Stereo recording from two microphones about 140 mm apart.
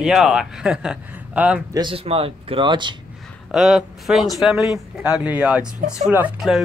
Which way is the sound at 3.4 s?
5° right (ahead or behind).